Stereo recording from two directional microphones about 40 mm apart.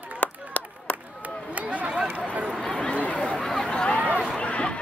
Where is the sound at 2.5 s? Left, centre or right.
Centre.